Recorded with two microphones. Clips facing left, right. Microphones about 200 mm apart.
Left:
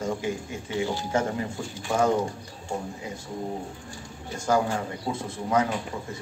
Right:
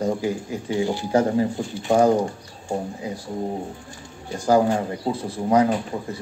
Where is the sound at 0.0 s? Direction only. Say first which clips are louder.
Right 5 dB; 35° right (ahead or behind).